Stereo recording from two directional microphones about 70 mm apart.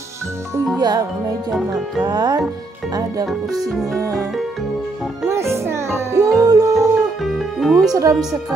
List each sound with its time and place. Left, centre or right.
0.7 s speech: right
1.5 s music: centre
2.0 s speech: right
3.3 s music: centre
5.2 s music: right
7.2 s music: centre
7.9 s a woman's voice: right